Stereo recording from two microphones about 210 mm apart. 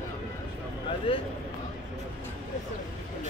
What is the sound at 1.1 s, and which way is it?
Speech, 25° left (ahead or behind).